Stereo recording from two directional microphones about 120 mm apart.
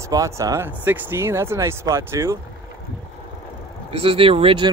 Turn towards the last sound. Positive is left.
turn(degrees=-50)  # may be behind; listen again after turning